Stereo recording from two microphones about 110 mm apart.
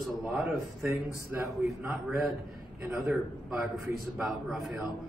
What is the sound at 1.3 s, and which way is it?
Speech, 20° right (ahead or behind).